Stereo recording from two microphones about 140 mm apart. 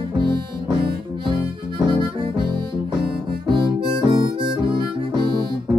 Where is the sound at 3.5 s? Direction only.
35° right (ahead or behind).